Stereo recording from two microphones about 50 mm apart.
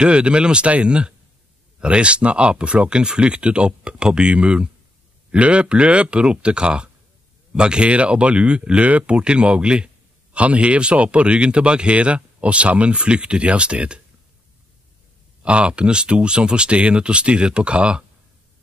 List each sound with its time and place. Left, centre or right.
0.0 s speech: right
15.4 s speech: right